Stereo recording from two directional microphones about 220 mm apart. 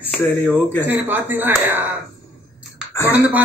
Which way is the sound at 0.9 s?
10° right (ahead or behind).